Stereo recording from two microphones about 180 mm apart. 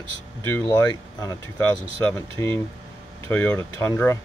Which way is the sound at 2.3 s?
15° left (ahead or behind).